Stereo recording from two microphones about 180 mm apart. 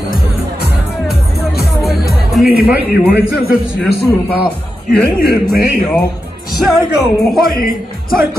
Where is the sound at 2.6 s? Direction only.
10° right (ahead or behind).